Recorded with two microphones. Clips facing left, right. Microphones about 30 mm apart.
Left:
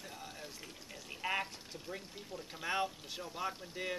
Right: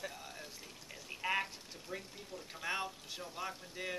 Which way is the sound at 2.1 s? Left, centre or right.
Centre.